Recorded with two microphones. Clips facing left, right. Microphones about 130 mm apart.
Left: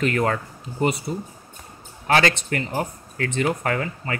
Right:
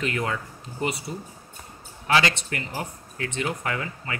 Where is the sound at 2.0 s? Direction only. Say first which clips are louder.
Left 3 dB; 45° left (ahead or behind).